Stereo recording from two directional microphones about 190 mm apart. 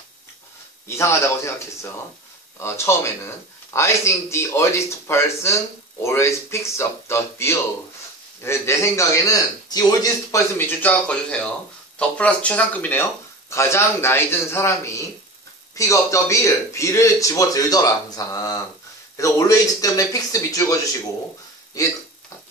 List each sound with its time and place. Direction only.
0.8 s speech: 15° left (ahead or behind)